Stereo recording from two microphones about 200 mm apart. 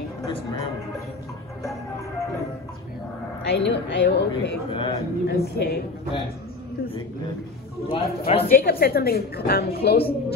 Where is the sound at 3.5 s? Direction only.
60° left (ahead or behind).